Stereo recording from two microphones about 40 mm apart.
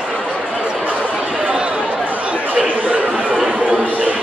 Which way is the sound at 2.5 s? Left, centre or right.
Right.